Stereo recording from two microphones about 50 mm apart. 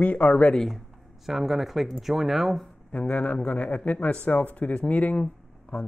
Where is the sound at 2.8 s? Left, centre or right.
Left.